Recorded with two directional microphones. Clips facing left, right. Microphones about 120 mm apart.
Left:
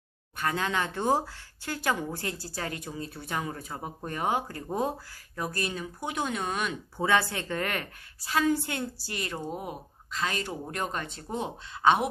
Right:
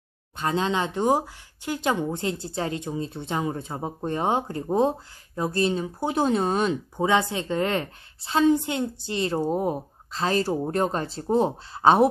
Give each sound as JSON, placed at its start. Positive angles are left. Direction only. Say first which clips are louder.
{"t": 0.4, "sound": "speech", "louder": "right 5 dB", "side_deg": -25}